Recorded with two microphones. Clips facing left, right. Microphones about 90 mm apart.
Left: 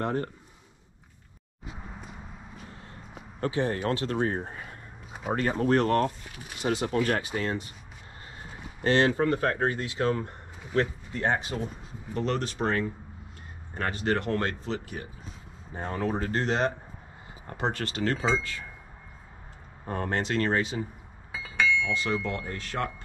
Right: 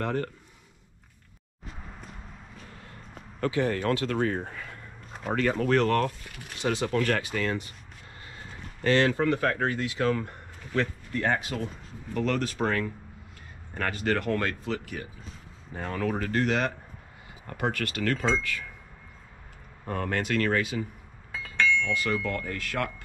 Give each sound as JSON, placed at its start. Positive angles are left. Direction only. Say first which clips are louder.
{"t": 0.0, "sound": "speech", "louder": "even", "side_deg": 25}
{"t": 1.7, "sound": "walk", "louder": "left 2 dB", "side_deg": 5}
{"t": 3.3, "sound": "speech", "louder": "right 1 dB", "side_deg": 30}
{"t": 6.2, "sound": "speech", "louder": "even", "side_deg": 5}
{"t": 8.8, "sound": "speech", "louder": "even", "side_deg": 25}
{"t": 17.7, "sound": "speech", "louder": "right 1 dB", "side_deg": -65}
{"t": 19.9, "sound": "speech", "louder": "even", "side_deg": 25}
{"t": 21.3, "sound": "chink", "louder": "even", "side_deg": 5}
{"t": 22.0, "sound": "speech", "louder": "right 1 dB", "side_deg": 20}